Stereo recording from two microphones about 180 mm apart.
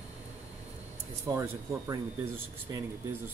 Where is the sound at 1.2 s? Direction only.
15° right (ahead or behind).